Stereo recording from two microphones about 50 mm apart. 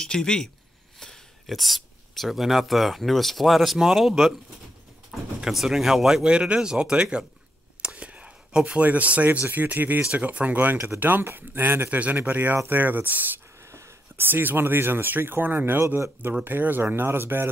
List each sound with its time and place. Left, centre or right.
0.0 s speech: centre
1.5 s speech: centre
6.2 s speech: centre
7.8 s whispering: right
8.8 s speech: right
11.9 s speech: right